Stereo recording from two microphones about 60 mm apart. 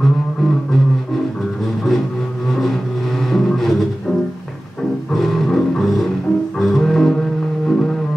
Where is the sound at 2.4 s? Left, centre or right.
Centre.